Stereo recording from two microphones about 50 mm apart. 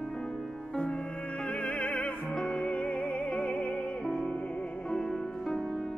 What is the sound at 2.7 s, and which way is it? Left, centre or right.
Music, left.